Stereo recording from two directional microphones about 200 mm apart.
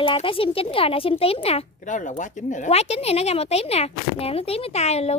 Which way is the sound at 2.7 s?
30° left (ahead or behind).